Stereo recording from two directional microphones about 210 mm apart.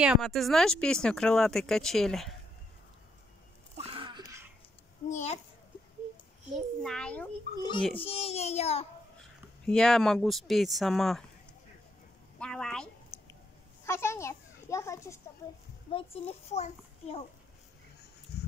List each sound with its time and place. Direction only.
0.0 s speech: centre (ahead or behind)
3.7 s a sound: 25° right (ahead or behind)
5.1 s a child's voice: 30° left (ahead or behind)
6.5 s speech: 5° left (ahead or behind)
7.5 s a child's voice: 50° left (ahead or behind)
8.0 s a child's voice: 30° left (ahead or behind)
9.7 s speech: 5° left (ahead or behind)
12.4 s a sound: 5° left (ahead or behind)
13.8 s a child's voice: 10° left (ahead or behind)
15.9 s a child's voice: 25° left (ahead or behind)
18.3 s a sound: 50° left (ahead or behind)